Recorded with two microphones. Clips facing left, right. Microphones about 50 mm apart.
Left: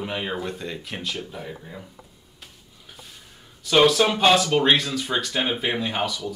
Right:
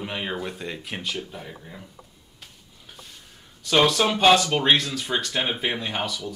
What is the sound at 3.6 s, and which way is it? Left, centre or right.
Speech, centre.